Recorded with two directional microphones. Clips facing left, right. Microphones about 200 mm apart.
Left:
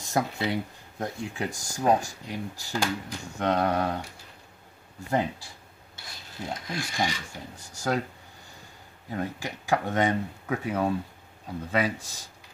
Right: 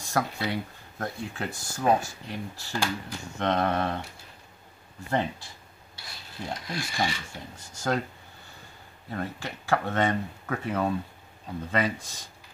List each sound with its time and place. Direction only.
0.0 s speech: 20° left (ahead or behind)
6.7 s speech: 15° left (ahead or behind)
9.1 s speech: 15° left (ahead or behind)